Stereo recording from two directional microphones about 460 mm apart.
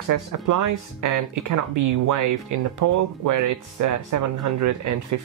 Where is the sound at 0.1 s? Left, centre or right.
Right.